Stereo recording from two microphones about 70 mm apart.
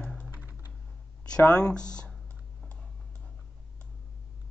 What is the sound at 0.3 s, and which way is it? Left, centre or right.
Typing, right.